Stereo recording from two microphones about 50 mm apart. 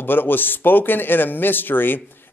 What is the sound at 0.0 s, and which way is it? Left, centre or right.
Speech, left.